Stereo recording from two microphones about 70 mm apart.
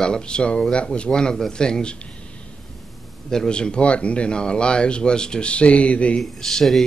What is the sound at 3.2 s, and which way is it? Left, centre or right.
Speech, centre.